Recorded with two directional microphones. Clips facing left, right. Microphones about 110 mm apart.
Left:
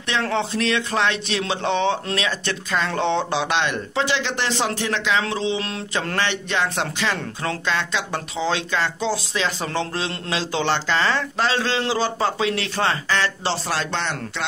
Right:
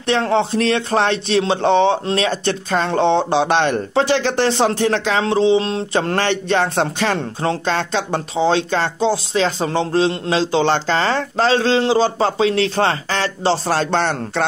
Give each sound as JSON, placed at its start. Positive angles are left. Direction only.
{"t": 0.0, "sound": "speech", "side_deg": -30}